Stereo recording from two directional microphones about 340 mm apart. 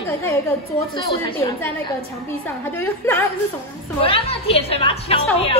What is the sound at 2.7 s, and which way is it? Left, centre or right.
Speech, centre.